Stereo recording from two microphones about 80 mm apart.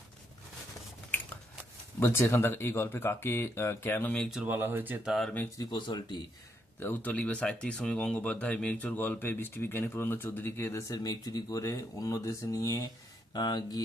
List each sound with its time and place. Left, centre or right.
2.0 s speech: left
4.5 s speech: right
5.6 s speech: left
6.8 s speech: left
10.9 s speech: left